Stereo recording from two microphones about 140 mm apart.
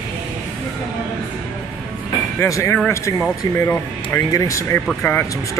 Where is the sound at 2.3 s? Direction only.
20° left (ahead or behind).